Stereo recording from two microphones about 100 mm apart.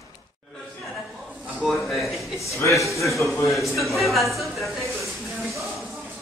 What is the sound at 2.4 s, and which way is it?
Speech, 30° left (ahead or behind).